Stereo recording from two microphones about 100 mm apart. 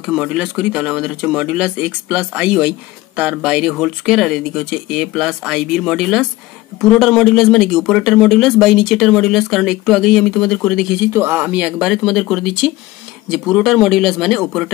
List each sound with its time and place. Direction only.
0.0 s speech: 10° right (ahead or behind)
11.1 s speech: 20° right (ahead or behind); by 14.7 s centre (ahead or behind)